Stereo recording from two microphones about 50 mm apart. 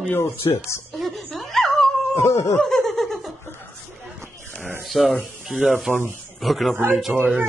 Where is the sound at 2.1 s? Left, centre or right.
Left.